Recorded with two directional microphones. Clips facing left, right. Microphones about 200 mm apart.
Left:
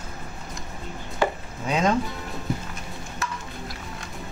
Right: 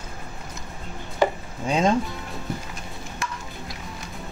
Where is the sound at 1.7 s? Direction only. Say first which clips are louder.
Right 2 dB; 30° right (ahead or behind).